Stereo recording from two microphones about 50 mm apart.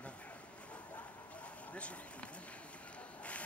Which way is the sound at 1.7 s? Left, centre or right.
Left.